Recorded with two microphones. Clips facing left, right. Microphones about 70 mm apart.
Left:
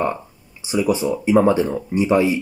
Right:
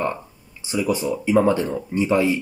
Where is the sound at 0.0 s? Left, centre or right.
Centre.